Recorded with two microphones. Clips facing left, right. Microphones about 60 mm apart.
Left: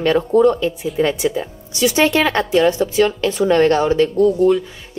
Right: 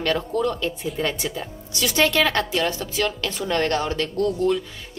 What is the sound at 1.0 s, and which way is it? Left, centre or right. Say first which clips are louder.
A woman's voice: left 10 dB; centre.